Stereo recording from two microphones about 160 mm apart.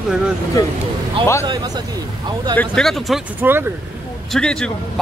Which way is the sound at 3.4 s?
15° right (ahead or behind).